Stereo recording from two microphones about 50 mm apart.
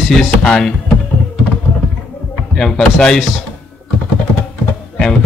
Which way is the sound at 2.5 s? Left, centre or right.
Centre.